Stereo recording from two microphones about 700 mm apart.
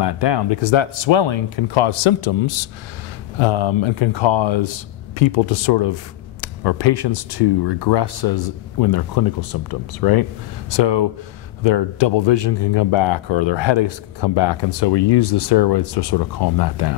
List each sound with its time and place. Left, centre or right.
0.0 s speech: left